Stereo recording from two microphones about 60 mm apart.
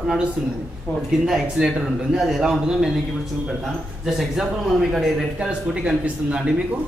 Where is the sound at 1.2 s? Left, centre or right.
Centre.